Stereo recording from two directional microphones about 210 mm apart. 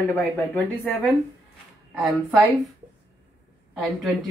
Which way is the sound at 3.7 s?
Centre (ahead or behind).